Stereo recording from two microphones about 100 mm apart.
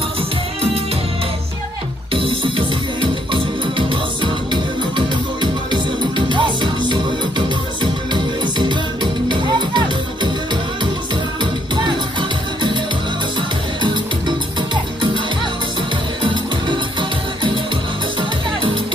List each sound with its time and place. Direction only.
2.1 s music: 60° right (ahead or behind)
11.7 s music: 50° right (ahead or behind)
13.8 s music: 50° right (ahead or behind)
16.2 s music: 50° right (ahead or behind)